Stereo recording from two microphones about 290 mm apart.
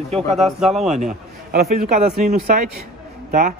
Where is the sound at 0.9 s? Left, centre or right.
Right.